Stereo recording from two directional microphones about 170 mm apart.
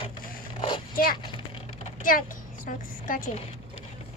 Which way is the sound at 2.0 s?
55° left (ahead or behind).